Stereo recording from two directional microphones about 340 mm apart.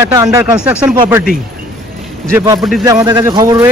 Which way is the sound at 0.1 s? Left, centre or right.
Centre.